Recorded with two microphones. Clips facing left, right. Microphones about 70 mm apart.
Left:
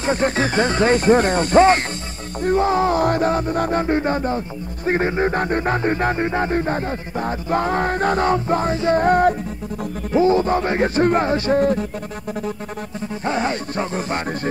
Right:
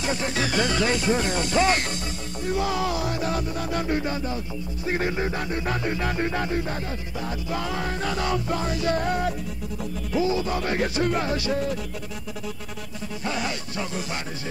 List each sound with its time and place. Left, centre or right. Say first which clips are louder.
0.0 s music: left 7 dB; left
13.2 s music: left 7 dB; left